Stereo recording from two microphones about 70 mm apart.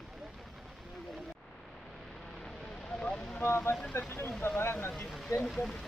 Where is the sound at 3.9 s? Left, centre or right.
Left.